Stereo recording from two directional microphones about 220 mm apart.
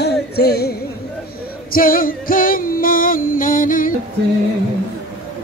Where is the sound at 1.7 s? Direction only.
40° left (ahead or behind).